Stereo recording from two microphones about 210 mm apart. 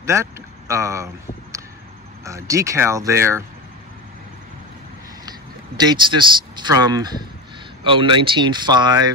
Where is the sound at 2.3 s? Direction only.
15° right (ahead or behind).